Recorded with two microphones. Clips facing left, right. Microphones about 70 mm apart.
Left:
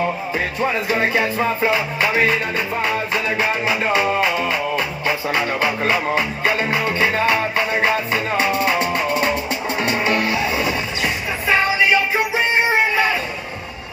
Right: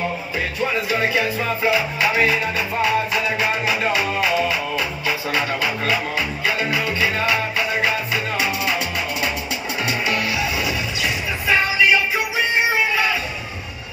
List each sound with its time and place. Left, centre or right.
0.6 s music: left